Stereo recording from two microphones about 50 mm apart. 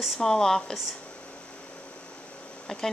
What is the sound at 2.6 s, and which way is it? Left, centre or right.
Speech, centre.